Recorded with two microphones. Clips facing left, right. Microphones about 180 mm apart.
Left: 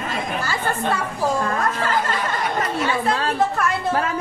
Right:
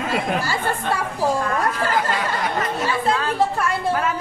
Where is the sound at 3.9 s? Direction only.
30° left (ahead or behind).